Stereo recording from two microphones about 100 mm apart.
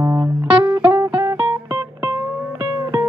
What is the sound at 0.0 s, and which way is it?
Music, 35° right (ahead or behind).